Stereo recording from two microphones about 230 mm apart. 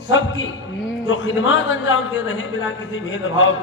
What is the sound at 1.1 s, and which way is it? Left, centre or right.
A man's voice, left.